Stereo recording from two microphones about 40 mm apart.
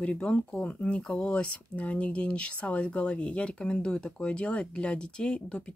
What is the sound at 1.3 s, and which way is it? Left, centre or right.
Speech, left.